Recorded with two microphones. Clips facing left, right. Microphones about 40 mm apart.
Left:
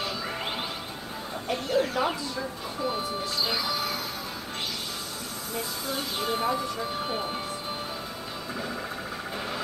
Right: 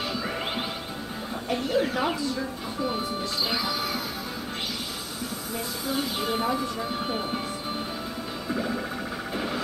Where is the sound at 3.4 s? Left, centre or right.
Centre.